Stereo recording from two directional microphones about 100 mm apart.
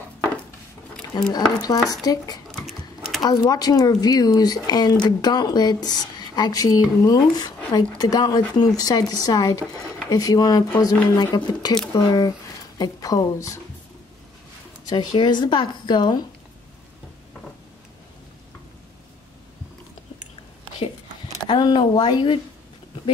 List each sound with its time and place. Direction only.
1.3 s speech: 40° left (ahead or behind)
2.5 s sewing machine: centre (ahead or behind)
3.2 s a woman's voice: 40° left (ahead or behind)
14.9 s a woman's voice: 50° left (ahead or behind)
21.5 s a woman's voice: 50° left (ahead or behind)